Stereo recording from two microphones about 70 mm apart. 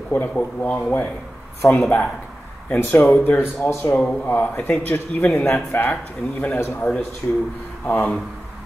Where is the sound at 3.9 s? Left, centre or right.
Centre.